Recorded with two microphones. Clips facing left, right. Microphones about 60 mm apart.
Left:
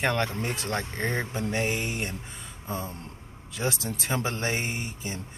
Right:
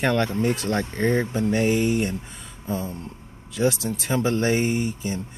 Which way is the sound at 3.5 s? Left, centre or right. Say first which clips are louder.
Right 7 dB; left.